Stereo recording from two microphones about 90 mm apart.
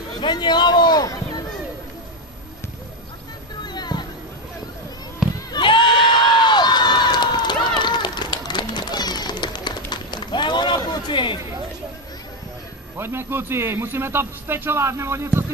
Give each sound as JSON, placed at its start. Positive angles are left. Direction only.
{"t": 0.2, "sound": "speech", "side_deg": 55}
{"t": 3.6, "sound": "music", "side_deg": 55}
{"t": 5.5, "sound": "crowd", "side_deg": 60}
{"t": 12.9, "sound": "a man's voice", "side_deg": -25}